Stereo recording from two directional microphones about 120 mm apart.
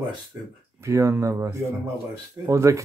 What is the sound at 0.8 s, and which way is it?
Speech, 25° right (ahead or behind).